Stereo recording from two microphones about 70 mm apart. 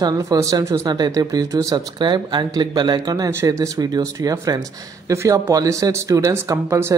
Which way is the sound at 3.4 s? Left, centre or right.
Right.